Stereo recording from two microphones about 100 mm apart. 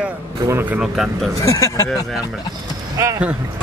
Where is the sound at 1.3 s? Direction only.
30° left (ahead or behind).